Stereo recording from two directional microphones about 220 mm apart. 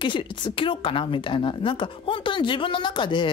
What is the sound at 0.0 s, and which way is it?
A woman's voice, 20° left (ahead or behind).